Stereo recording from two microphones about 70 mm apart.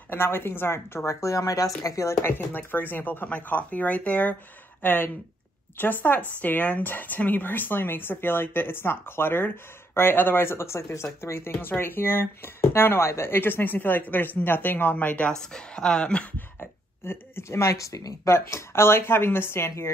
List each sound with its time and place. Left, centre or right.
0.1 s speech: left
2.3 s speech: left; by 16.3 s centre
16.3 s speech: left